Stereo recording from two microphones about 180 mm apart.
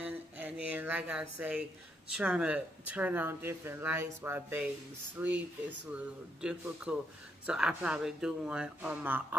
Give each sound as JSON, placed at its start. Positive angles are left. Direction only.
{"t": 0.0, "sound": "a sound", "side_deg": -5}
{"t": 2.1, "sound": "speech", "side_deg": -5}
{"t": 6.4, "sound": "speech", "side_deg": -5}